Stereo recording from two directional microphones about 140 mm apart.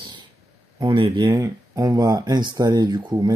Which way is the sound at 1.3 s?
25° right (ahead or behind).